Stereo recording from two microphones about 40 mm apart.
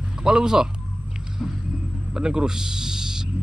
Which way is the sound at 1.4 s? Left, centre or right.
Centre.